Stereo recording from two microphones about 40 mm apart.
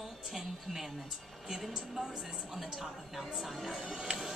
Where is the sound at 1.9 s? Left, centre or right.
Centre.